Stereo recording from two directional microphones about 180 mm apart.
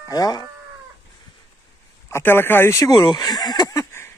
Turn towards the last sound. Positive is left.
turn(degrees=15)  # may be behind; listen again after turning